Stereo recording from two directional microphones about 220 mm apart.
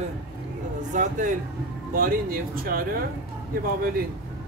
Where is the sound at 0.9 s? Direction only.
35° right (ahead or behind).